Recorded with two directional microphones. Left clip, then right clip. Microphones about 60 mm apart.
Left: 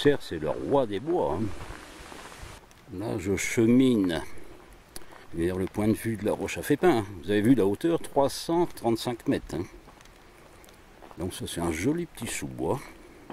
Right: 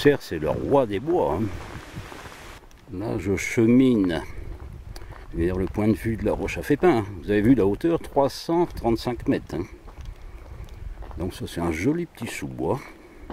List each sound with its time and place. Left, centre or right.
0.0 s speech: centre
11.1 s speech: centre